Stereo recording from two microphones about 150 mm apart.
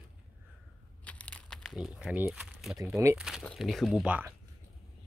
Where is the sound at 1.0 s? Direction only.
10° left (ahead or behind).